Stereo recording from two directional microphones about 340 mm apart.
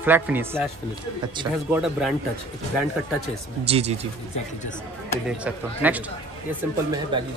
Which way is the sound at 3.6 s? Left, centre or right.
Centre.